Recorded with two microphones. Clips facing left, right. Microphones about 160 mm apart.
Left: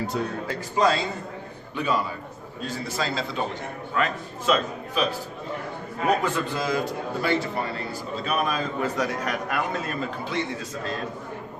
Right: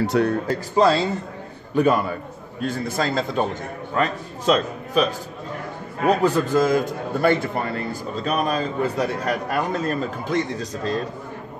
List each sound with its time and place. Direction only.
0.0 s a man's voice: 75° right (ahead or behind)
0.5 s a man's voice: 30° right (ahead or behind)
1.8 s a man's voice: 55° right (ahead or behind)
3.9 s a man's voice: 40° right (ahead or behind)
6.0 s a man's voice: 40° right (ahead or behind)